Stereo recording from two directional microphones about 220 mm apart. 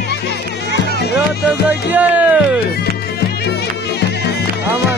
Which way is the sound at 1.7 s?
10° right (ahead or behind).